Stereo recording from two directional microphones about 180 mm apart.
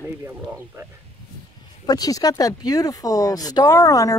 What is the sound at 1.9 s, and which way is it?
Speech, 20° left (ahead or behind).